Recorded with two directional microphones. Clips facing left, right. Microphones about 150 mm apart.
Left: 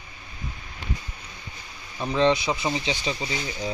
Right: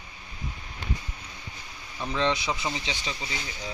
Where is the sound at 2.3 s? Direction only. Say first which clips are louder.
Left 5 dB; 5° left (ahead or behind).